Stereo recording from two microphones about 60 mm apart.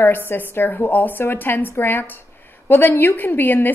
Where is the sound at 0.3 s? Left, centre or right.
Left.